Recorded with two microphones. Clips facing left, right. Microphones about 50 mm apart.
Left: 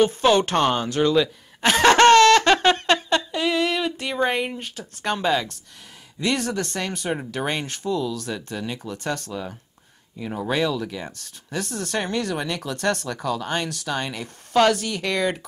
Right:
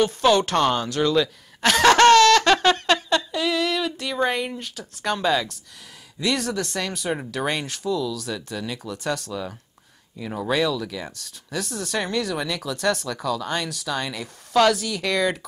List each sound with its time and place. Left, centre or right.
0.0 s speech: centre
7.9 s speech: centre
8.9 s speech: centre
10.5 s speech: centre
11.5 s speech: centre
13.2 s speech: left
13.9 s speech: centre